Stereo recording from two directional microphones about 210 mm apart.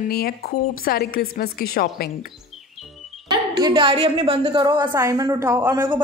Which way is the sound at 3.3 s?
20° right (ahead or behind).